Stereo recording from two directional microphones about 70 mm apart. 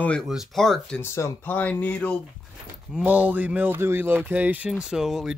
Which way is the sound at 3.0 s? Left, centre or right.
Right.